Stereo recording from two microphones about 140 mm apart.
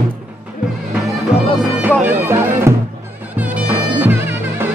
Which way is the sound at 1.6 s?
10° right (ahead or behind).